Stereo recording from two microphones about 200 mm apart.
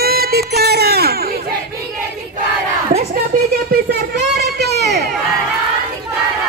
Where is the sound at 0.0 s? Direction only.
50° right (ahead or behind).